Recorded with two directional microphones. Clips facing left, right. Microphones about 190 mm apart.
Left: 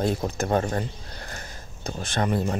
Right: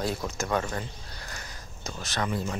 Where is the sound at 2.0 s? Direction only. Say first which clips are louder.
Left 5 dB; 55° left (ahead or behind).